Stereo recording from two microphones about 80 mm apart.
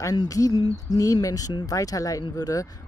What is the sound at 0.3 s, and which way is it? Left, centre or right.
Speech, left.